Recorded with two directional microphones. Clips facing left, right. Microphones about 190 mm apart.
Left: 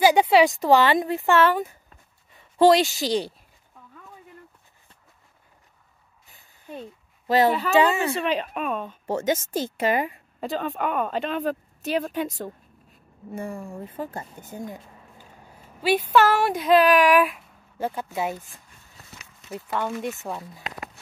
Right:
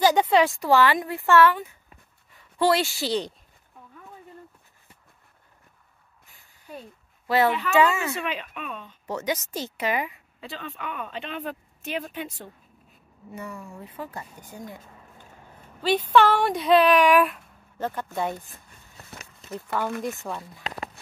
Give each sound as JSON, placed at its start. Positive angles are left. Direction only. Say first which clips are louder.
{"t": 0.0, "sound": "a woman's voice", "louder": "left 3 dB", "side_deg": 10}
{"t": 7.2, "sound": "a woman's voice", "louder": "left 2 dB", "side_deg": 40}
{"t": 13.7, "sound": "a woman's voice", "louder": "left 4 dB", "side_deg": 50}
{"t": 14.1, "sound": "a woman's voice", "louder": "left 3 dB", "side_deg": 25}
{"t": 14.8, "sound": "speech", "louder": "left 1 dB", "side_deg": 10}
{"t": 19.5, "sound": "speech", "louder": "even", "side_deg": 0}